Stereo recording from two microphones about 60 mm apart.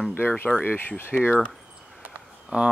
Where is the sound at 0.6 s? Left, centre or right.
Left.